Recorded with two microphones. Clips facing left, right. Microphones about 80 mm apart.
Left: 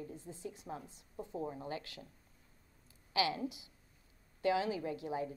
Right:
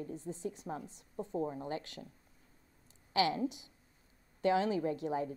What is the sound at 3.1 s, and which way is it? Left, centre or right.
A woman's voice, right.